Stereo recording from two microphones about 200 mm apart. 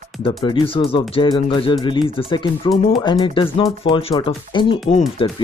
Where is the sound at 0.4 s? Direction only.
20° left (ahead or behind).